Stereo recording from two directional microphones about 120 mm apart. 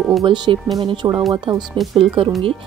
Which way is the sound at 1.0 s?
30° right (ahead or behind).